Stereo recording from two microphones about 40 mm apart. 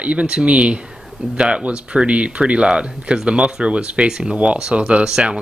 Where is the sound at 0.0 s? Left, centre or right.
Right.